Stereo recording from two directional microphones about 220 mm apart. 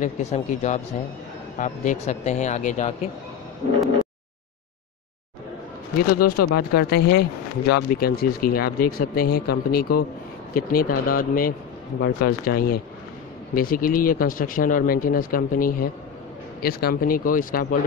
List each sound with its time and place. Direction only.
0.0 s speech: 30° left (ahead or behind)
5.9 s speech: 40° left (ahead or behind)